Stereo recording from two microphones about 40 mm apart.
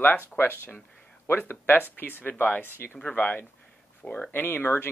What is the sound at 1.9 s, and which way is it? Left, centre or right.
Speech, left.